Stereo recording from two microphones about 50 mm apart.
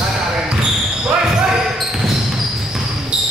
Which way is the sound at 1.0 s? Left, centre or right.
Centre.